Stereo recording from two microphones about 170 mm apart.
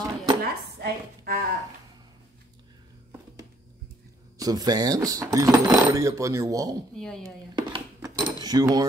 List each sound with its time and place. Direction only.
0.4 s chopping: 65° right (ahead or behind)
4.4 s speech: 20° right (ahead or behind)
7.0 s speech: 5° left (ahead or behind)
7.2 s cutlery: 25° right (ahead or behind)